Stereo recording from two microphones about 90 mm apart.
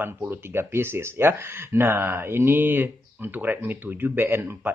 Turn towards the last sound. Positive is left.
turn(degrees=-25)  # may be behind; listen again after turning